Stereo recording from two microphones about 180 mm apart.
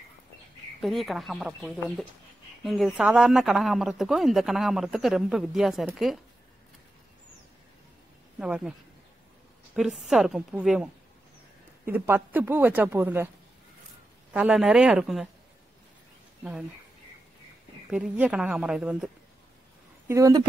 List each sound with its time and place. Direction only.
0.7 s speech: centre (ahead or behind)
8.4 s speech: 5° right (ahead or behind)
9.8 s a woman's voice: centre (ahead or behind)
14.3 s speech: 5° right (ahead or behind)
17.8 s speech: 5° right (ahead or behind)
20.1 s a woman's voice: 20° right (ahead or behind)